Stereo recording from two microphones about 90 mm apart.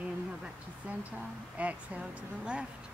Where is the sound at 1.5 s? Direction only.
15° right (ahead or behind).